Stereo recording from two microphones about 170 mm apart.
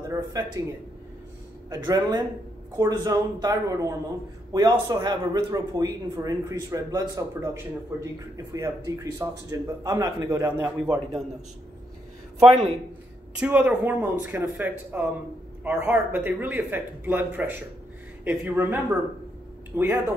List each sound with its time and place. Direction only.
0.1 s speech: 15° right (ahead or behind)
1.7 s a man's voice: 20° right (ahead or behind)
12.4 s speech: 35° right (ahead or behind)
13.3 s speech: 5° right (ahead or behind)